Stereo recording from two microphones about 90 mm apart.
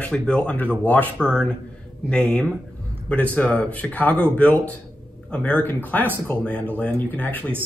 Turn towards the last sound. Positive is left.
turn(degrees=20)  # may be behind; listen again after turning